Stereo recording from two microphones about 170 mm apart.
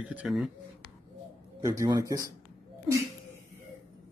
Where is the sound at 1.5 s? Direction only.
20° right (ahead or behind).